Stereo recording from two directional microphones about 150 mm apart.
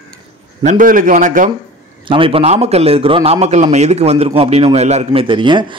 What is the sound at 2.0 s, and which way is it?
A man's voice, 35° right (ahead or behind).